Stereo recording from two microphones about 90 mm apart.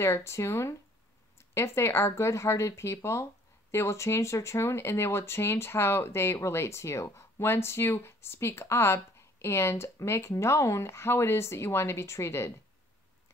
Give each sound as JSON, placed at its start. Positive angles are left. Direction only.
{"t": 0.0, "sound": "speech", "side_deg": 30}